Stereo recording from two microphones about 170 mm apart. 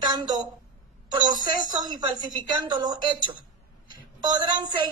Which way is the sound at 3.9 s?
25° right (ahead or behind).